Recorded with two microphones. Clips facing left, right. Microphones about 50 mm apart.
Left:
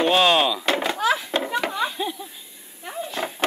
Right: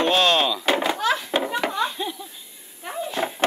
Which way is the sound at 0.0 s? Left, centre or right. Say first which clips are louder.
Left 1 dB; centre.